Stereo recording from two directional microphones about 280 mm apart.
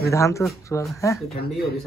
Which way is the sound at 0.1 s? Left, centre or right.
Centre.